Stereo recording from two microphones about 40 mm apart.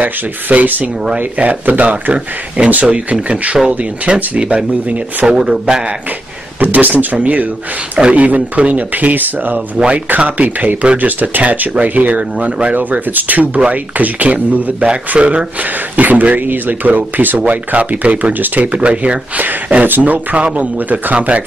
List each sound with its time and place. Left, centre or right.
0.0 s speech: right
2.1 s speech: right
5.2 s a man's voice: centre
6.6 s speech: right
9.8 s speech: right
10.0 s speech: right
15.6 s speech: right
17.5 s speech: right
18.7 s speech: right
20.0 s speech: right
20.3 s speech: right
20.7 s speech: right